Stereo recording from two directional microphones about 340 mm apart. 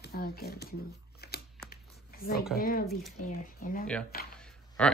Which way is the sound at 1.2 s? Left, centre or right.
Left.